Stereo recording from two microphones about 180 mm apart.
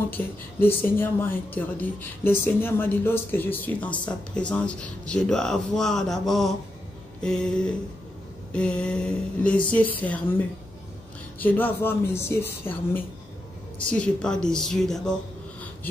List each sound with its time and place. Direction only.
0.1 s speech: 10° left (ahead or behind)
11.3 s speech: 10° left (ahead or behind)